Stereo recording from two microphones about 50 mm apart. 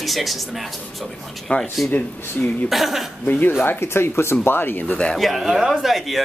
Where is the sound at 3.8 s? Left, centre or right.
Left.